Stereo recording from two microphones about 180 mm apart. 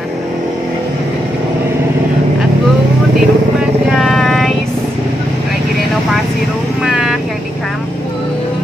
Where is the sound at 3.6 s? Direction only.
Centre (ahead or behind).